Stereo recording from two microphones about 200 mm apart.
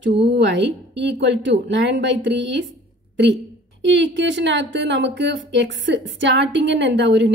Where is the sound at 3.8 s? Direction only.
65° right (ahead or behind).